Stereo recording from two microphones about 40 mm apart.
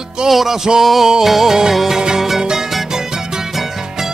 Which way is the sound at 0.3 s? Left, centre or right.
Centre.